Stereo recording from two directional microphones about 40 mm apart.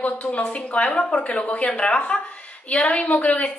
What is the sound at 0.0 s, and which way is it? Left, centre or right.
A woman's voice, left.